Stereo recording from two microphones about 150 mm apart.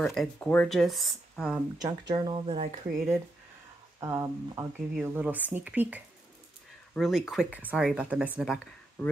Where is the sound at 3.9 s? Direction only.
20° right (ahead or behind).